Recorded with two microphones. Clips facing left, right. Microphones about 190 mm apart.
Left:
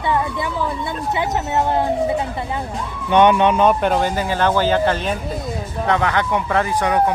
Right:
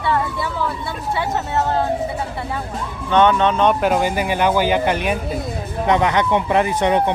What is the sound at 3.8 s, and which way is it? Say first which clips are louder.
Speech: right 1 dB; 10° right (ahead or behind).